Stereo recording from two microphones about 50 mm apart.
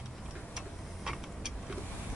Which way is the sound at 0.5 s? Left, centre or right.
Centre.